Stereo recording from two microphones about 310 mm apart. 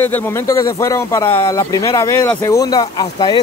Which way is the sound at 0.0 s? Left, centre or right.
Centre.